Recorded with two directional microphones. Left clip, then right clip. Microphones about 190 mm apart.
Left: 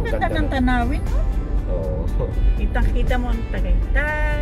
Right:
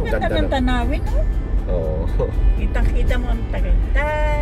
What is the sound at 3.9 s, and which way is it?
Speech, 25° left (ahead or behind).